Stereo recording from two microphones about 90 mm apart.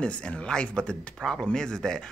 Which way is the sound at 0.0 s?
15° left (ahead or behind).